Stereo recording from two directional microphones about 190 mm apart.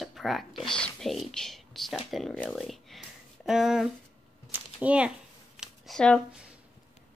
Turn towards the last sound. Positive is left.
turn(degrees=5)  # may be behind; listen again after turning